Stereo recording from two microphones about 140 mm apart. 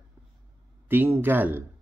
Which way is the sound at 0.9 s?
15° right (ahead or behind).